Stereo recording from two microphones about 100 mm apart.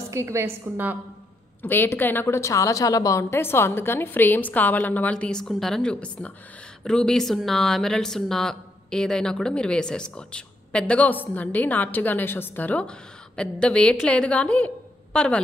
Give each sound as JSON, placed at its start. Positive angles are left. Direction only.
{"t": 0.1, "sound": "a woman's voice", "side_deg": -30}
{"t": 1.6, "sound": "a woman's voice", "side_deg": 20}